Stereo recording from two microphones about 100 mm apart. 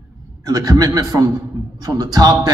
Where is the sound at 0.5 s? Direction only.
40° right (ahead or behind).